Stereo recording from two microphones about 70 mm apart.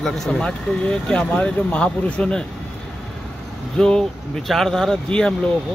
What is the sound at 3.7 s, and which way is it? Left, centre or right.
Speech, centre.